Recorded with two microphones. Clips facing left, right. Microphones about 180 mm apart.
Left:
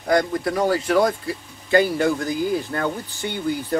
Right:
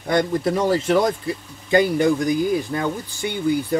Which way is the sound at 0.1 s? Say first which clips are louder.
Right 1 dB; 25° right (ahead or behind).